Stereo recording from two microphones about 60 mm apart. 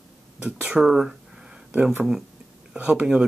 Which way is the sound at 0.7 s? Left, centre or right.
Centre.